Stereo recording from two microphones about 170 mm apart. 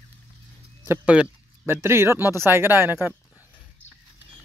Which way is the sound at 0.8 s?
10° right (ahead or behind).